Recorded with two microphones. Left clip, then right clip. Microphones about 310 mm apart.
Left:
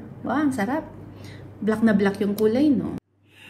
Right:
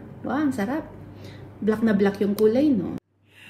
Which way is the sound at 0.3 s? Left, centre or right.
Left.